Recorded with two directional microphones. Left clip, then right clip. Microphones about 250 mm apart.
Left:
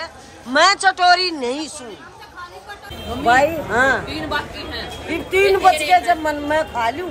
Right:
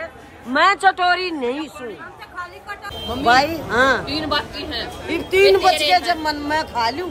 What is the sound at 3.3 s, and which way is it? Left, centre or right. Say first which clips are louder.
A man's voice: left 1 dB; centre.